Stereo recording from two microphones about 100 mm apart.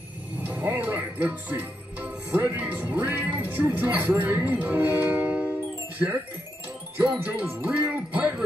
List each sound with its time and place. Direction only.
0.4 s speech: 15° right (ahead or behind)
7.0 s music: 5° right (ahead or behind)
7.8 s speech: 15° right (ahead or behind)